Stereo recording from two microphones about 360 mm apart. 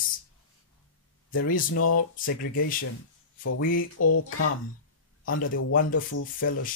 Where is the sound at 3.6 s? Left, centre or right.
Left.